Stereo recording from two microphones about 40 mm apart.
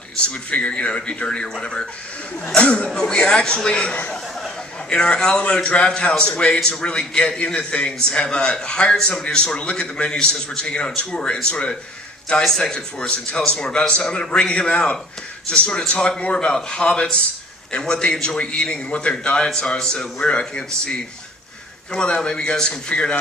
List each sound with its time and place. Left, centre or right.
0.3 s a man's voice: left
2.4 s a man's voice: left
12.4 s a man's voice: centre
16.2 s a man's voice: left